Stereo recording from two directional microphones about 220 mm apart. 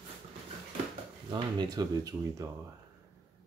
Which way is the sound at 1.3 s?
20° right (ahead or behind).